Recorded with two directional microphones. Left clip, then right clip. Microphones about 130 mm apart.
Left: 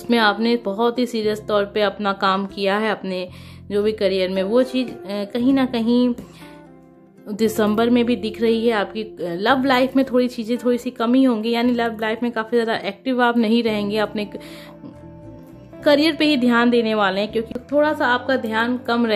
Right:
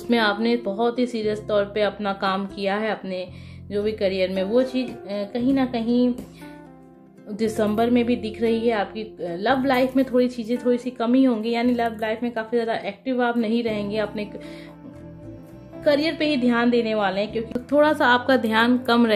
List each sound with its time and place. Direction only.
0.1 s a woman's voice: 35° left (ahead or behind); by 6.1 s 50° left (ahead or behind)
7.2 s a woman's voice: 50° left (ahead or behind)
15.8 s a woman's voice: 55° left (ahead or behind)
17.5 s a woman's voice: centre (ahead or behind)